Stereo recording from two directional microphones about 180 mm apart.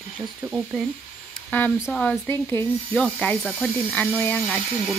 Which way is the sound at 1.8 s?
5° left (ahead or behind).